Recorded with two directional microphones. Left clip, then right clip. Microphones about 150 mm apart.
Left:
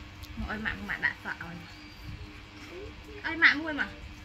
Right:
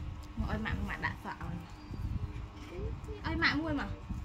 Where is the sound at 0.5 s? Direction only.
40° right (ahead or behind).